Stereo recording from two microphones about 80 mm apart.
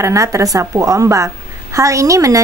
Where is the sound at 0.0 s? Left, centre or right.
Right.